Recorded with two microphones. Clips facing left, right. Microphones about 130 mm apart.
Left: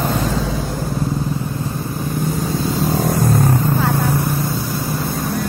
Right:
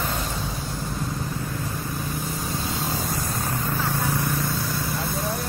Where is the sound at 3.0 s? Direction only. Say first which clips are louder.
Left 12 dB; 55° left (ahead or behind).